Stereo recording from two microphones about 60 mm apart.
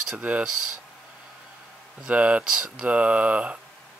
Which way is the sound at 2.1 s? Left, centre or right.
Right.